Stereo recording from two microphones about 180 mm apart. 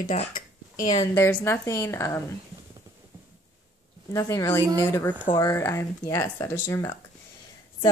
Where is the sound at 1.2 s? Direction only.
15° left (ahead or behind).